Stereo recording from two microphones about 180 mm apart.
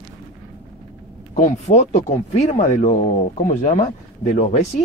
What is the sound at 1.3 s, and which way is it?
Speech, 40° left (ahead or behind).